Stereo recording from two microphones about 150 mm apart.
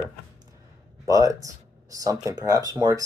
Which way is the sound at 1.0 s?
20° right (ahead or behind).